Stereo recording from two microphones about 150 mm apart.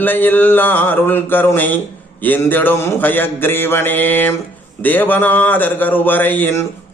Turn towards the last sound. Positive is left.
turn(degrees=10)  # may be behind; listen again after turning